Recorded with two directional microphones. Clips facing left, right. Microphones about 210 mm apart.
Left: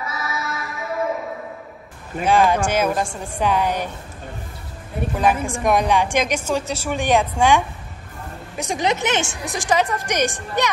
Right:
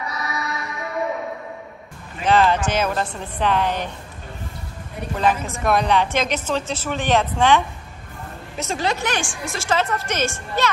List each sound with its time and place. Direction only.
0.0 s music: centre (ahead or behind)
2.2 s a woman's voice: 10° left (ahead or behind)
5.1 s a woman's voice: 10° left (ahead or behind)